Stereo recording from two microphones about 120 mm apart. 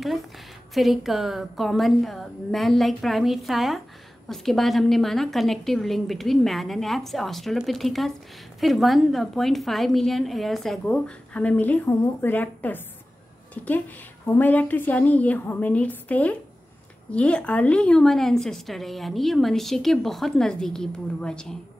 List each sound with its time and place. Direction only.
0.7 s a woman's voice: centre (ahead or behind)